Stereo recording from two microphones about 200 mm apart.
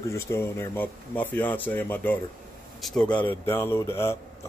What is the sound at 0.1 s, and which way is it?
Speech, 15° left (ahead or behind).